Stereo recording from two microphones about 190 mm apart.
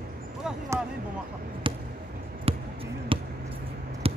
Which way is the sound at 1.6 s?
25° right (ahead or behind).